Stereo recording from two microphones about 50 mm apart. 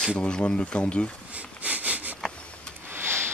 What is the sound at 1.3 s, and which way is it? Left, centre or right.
Sniff, right.